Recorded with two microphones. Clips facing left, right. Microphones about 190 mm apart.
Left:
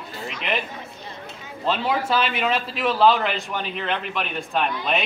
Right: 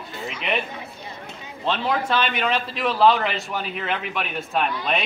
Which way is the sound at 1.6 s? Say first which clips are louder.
Even; 5° left (ahead or behind).